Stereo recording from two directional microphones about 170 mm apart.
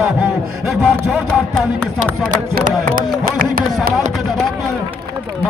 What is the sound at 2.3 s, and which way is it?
Speech, 50° right (ahead or behind).